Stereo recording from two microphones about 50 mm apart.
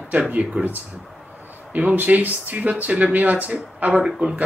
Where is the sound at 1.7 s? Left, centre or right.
Right.